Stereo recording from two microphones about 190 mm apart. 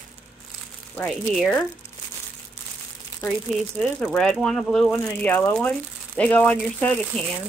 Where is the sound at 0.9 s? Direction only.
5° left (ahead or behind).